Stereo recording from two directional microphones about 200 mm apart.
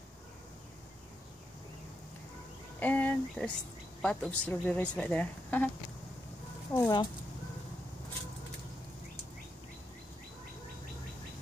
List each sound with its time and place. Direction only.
2.8 s speech: 10° left (ahead or behind)
6.7 s speech: 20° left (ahead or behind)